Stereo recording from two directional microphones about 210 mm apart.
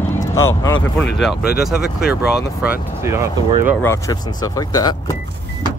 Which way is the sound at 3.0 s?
15° right (ahead or behind).